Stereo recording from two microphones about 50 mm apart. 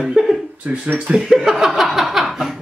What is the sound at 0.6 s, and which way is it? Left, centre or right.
Speech, right.